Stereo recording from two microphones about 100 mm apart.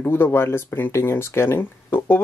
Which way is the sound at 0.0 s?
25° left (ahead or behind).